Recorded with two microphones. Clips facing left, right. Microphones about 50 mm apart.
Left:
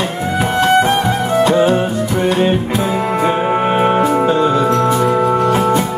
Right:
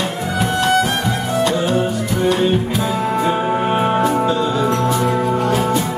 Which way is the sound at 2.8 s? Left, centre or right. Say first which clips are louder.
Left 2 dB; left.